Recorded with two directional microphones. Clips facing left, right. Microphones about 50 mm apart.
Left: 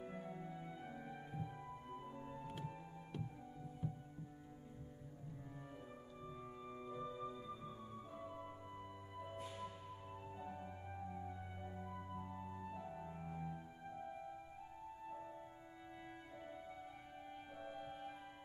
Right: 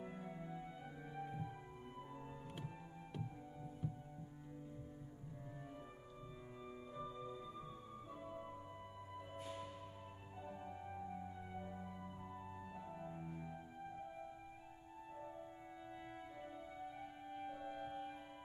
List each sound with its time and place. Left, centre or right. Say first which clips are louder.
0.1 s music: even; centre
6.6 s music: left 1 dB; centre
9.3 s music: even; centre
17.4 s music: right 5 dB; centre